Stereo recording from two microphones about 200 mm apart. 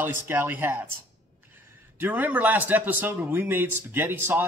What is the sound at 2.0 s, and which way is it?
Speech, 10° right (ahead or behind).